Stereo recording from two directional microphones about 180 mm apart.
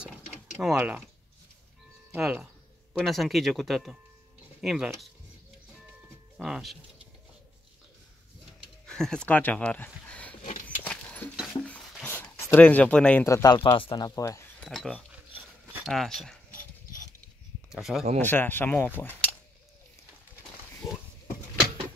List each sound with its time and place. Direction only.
0.6 s speech: 5° right (ahead or behind)
2.1 s speech: 5° right (ahead or behind)
6.3 s speech: centre (ahead or behind)
8.8 s speech: 5° left (ahead or behind)
10.8 s horse: 10° left (ahead or behind)
11.3 s a sound: 5° left (ahead or behind)
13.6 s speech: 30° left (ahead or behind)
14.6 s speech: 5° left (ahead or behind)
17.6 s speech: centre (ahead or behind)
18.2 s speech: 10° left (ahead or behind)